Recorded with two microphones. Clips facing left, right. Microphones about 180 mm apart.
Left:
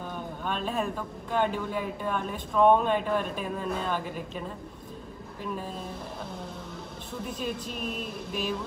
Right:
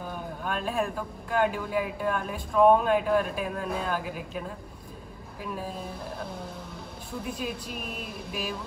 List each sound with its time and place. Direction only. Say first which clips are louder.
0.0 s a sound: even; 5° right (ahead or behind)
0.9 s a woman's voice: right 1 dB; 5° right (ahead or behind)
7.2 s speech: left 1 dB; 5° right (ahead or behind)